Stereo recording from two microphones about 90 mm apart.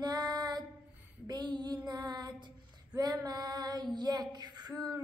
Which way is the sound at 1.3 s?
55° right (ahead or behind).